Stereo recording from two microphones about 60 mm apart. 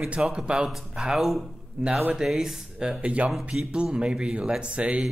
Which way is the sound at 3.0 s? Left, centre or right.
Centre.